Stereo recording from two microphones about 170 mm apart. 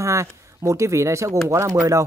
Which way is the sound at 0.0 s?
15° right (ahead or behind).